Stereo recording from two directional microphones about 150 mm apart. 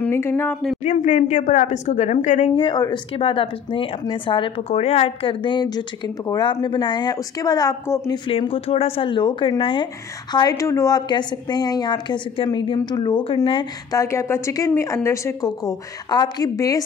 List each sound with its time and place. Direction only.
0.0 s speech: 15° left (ahead or behind)
0.8 s a woman's voice: 55° left (ahead or behind)
2.5 s speech: 30° left (ahead or behind)
8.1 s speech: 40° left (ahead or behind)
10.5 s a woman's voice: 20° left (ahead or behind); by 13.7 s 35° left (ahead or behind)
13.9 s a woman's voice: 20° left (ahead or behind)